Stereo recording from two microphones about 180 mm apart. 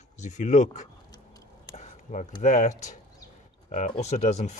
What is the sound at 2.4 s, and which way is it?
Speech, 45° left (ahead or behind).